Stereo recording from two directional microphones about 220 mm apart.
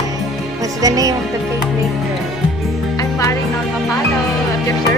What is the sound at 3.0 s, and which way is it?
Music, 15° left (ahead or behind).